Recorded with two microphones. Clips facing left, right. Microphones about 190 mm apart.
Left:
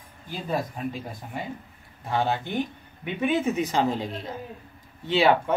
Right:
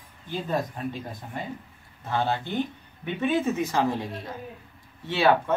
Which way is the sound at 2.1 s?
15° left (ahead or behind).